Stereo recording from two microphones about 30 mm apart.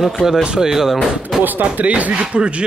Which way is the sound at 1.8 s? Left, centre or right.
Right.